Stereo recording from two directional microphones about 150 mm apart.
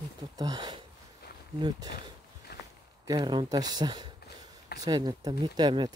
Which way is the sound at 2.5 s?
90° left.